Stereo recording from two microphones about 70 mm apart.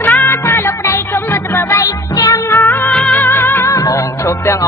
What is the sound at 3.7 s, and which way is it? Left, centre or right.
Music, left.